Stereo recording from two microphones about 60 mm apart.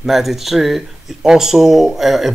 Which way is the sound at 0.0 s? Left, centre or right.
Centre.